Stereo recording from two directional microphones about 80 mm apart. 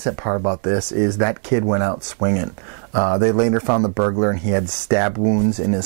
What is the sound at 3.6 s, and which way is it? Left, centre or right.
Speech, right.